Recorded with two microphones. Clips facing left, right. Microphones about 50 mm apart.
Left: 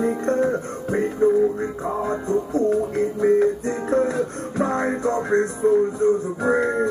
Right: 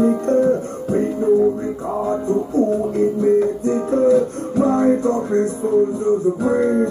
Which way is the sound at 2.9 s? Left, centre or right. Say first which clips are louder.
Right 5 dB; left.